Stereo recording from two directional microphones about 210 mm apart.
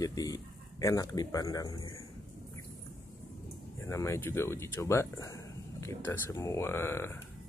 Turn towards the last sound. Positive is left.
turn(degrees=10)  # may be behind; listen again after turning